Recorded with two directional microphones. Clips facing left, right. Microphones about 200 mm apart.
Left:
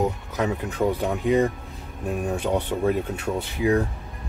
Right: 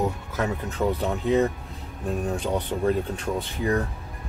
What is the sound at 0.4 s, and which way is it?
Speech, 15° left (ahead or behind).